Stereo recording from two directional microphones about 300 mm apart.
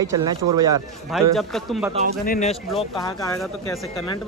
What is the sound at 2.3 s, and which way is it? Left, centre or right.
Speech, left.